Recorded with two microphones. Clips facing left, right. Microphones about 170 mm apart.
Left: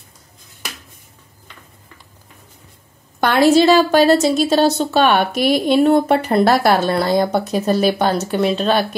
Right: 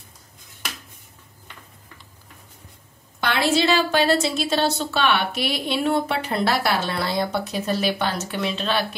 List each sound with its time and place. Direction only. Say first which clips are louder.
3.2 s a woman's voice: left 9 dB; 45° left (ahead or behind)